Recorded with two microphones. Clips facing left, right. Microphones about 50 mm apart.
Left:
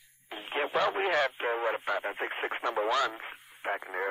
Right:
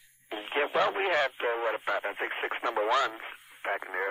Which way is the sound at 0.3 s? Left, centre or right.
Centre.